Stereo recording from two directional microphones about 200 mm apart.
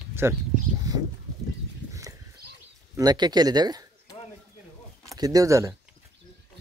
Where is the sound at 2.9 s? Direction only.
20° right (ahead or behind).